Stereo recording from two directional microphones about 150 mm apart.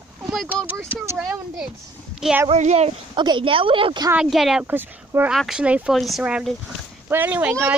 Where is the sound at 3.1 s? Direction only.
30° right (ahead or behind).